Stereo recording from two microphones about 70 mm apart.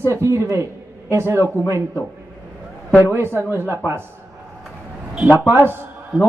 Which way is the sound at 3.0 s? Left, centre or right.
Right.